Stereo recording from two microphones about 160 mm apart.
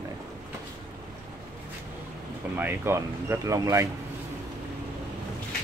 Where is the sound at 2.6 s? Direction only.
15° right (ahead or behind).